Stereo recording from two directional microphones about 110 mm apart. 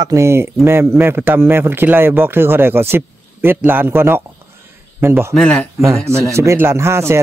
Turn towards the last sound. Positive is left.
turn(degrees=-25)  # may be behind; listen again after turning